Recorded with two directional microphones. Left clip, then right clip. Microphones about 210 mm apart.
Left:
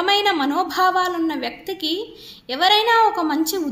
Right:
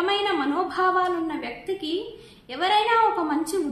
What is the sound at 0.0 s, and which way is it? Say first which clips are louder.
A woman's voice: left 5 dB; 45° left (ahead or behind).